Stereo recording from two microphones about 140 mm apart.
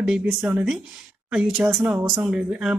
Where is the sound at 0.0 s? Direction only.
10° right (ahead or behind).